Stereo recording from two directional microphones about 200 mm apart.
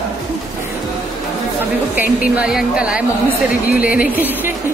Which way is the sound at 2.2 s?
5° right (ahead or behind).